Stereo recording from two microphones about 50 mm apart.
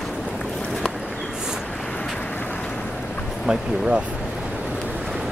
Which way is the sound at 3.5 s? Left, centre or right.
Centre.